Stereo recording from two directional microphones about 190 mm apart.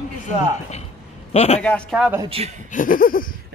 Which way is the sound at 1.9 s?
5° right (ahead or behind).